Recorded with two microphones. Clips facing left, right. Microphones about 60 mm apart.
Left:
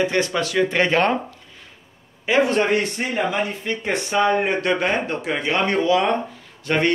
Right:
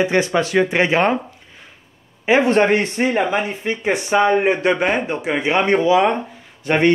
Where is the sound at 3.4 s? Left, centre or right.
Right.